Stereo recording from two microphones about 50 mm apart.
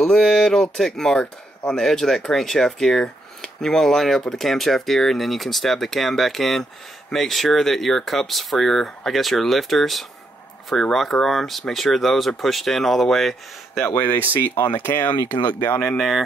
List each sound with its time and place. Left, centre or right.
0.0 s speech: centre
13.9 s speech: left